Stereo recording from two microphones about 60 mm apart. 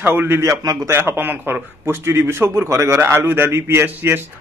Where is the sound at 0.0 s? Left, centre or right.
Right.